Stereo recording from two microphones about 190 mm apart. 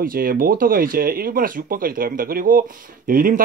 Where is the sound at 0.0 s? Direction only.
50° right (ahead or behind).